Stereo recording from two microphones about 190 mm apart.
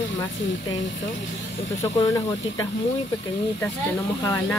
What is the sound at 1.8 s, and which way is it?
Speech, 15° left (ahead or behind).